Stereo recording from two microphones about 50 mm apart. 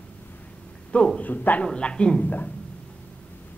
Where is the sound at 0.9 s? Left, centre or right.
Left.